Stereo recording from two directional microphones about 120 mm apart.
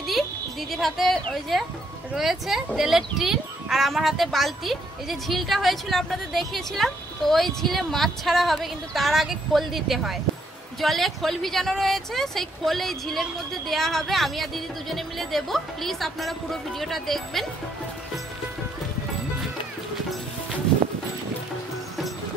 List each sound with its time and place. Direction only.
0.0 s speech: centre (ahead or behind)